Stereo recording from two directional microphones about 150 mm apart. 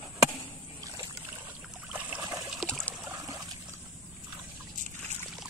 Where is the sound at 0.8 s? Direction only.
15° right (ahead or behind).